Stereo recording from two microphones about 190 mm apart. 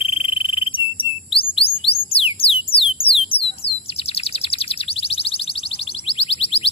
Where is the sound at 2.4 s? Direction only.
30° left (ahead or behind).